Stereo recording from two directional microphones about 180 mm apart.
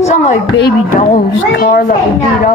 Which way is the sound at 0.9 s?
50° left (ahead or behind).